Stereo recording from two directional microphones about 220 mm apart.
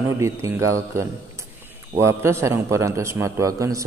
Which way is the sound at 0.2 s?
15° right (ahead or behind).